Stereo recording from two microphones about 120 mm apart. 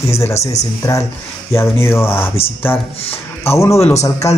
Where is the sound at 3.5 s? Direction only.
25° left (ahead or behind).